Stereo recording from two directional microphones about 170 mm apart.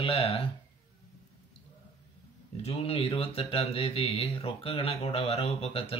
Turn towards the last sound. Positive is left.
turn(degrees=35)  # may be behind; listen again after turning